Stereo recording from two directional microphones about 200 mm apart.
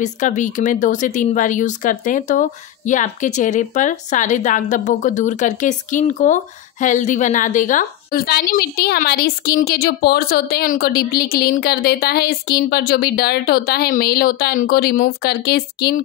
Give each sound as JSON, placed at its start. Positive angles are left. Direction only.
{"t": 0.0, "sound": "speech", "side_deg": 35}